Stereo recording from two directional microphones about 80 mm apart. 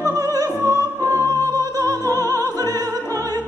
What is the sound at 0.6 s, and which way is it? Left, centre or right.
Music, right.